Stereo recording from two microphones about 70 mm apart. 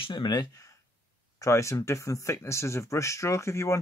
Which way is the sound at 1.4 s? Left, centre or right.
Left.